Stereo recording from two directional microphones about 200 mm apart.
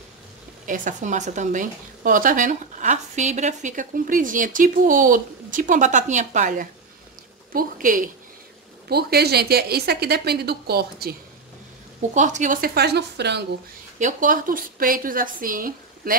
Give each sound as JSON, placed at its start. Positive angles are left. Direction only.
{"t": 0.7, "sound": "speech", "side_deg": -40}
{"t": 8.8, "sound": "a woman's voice", "side_deg": -50}
{"t": 12.1, "sound": "a woman's voice", "side_deg": -35}
{"t": 13.9, "sound": "a woman's voice", "side_deg": -40}